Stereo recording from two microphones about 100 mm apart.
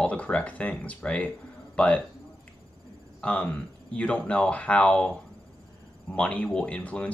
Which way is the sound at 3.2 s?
10° left (ahead or behind).